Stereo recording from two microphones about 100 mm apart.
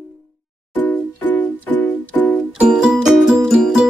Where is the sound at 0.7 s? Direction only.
15° left (ahead or behind).